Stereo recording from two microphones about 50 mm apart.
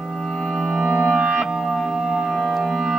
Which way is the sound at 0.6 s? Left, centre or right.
Centre.